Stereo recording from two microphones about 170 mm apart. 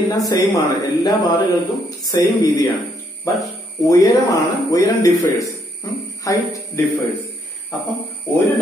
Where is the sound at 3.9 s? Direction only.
20° left (ahead or behind).